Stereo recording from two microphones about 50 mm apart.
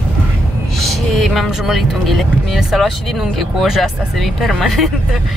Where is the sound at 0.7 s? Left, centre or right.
Centre.